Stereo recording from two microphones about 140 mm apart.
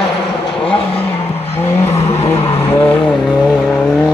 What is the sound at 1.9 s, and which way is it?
Vehicle, 50° left (ahead or behind).